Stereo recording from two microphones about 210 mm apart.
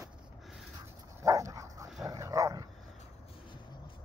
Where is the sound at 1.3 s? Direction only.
15° right (ahead or behind).